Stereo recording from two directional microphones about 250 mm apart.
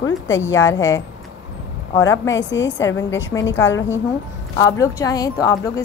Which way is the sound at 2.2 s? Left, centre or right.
Left.